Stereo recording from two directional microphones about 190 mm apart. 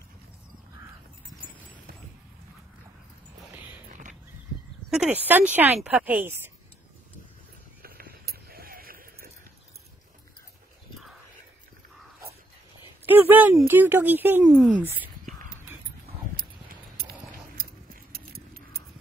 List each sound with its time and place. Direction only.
4.9 s speech: 5° right (ahead or behind)
7.8 s a sound: 50° right (ahead or behind)
13.0 s speech: 10° right (ahead or behind)
17.0 s keys jangling: 55° right (ahead or behind)